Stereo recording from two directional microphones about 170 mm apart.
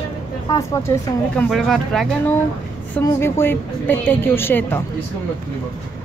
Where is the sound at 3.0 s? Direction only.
15° left (ahead or behind).